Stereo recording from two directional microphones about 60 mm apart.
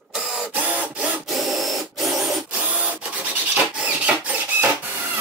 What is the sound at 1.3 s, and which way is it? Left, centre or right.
Tools, centre.